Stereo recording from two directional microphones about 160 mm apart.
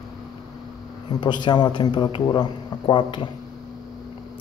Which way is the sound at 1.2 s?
30° left (ahead or behind).